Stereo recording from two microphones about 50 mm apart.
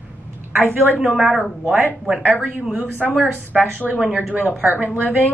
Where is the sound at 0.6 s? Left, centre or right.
Right.